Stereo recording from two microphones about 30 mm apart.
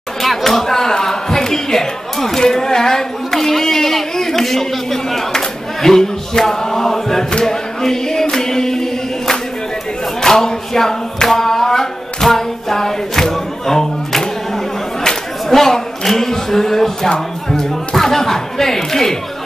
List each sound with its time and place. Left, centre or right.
0.2 s speech: centre
7.4 s music: centre
10.2 s a sound: centre
11.2 s music: centre
15.5 s speech: centre